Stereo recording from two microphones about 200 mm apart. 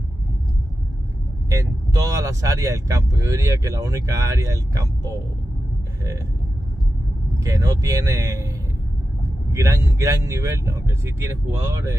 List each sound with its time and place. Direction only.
1.5 s speech: 15° right (ahead or behind)
7.4 s speech: 15° right (ahead or behind)
9.5 s speech: 15° right (ahead or behind)